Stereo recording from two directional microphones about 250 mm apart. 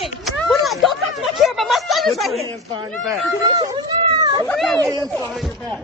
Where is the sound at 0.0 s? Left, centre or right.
Centre.